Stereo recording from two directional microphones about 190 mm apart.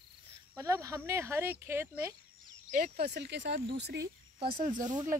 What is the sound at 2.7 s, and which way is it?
Speech, 50° right (ahead or behind).